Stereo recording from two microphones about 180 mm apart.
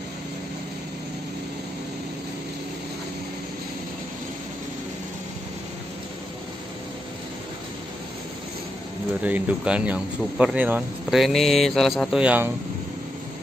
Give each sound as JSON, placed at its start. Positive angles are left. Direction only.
{"t": 9.2, "sound": "speech", "side_deg": -10}